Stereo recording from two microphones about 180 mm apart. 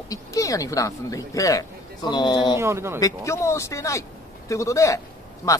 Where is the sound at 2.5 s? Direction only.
15° right (ahead or behind).